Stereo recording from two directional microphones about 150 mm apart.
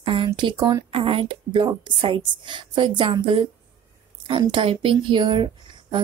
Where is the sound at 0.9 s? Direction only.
35° right (ahead or behind).